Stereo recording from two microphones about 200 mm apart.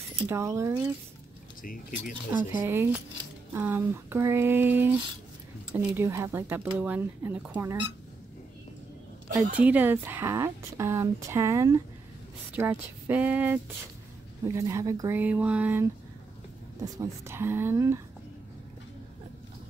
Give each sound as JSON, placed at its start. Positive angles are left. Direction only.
{"t": 0.3, "sound": "speech", "side_deg": -15}
{"t": 1.6, "sound": "speech", "side_deg": 45}
{"t": 2.5, "sound": "speech", "side_deg": -10}
{"t": 9.5, "sound": "speech", "side_deg": -10}